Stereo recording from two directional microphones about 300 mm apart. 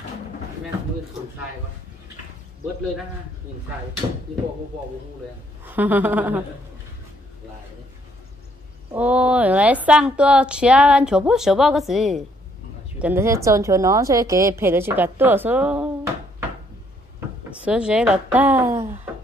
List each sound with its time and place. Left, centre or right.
4.0 s a woman's voice: centre
5.7 s a woman's voice: centre
8.9 s a woman's voice: centre
17.6 s a woman's voice: centre
18.7 s a sound: right